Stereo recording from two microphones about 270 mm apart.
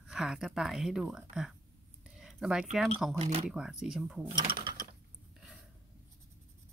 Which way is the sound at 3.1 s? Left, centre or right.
Right.